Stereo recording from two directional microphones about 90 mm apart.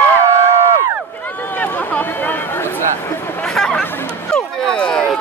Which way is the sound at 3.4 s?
10° left (ahead or behind).